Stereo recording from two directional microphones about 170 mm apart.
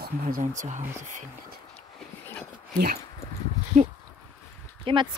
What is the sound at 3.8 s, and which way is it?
Speech, 50° right (ahead or behind).